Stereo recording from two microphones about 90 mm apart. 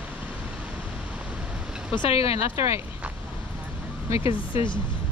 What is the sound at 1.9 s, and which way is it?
Speech, 80° left.